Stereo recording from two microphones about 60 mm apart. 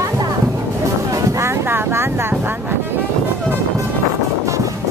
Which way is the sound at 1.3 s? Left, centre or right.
Right.